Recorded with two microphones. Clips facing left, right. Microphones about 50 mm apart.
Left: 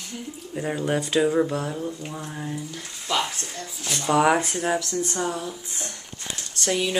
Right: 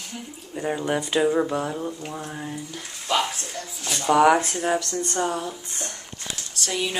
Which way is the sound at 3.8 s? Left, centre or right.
Centre.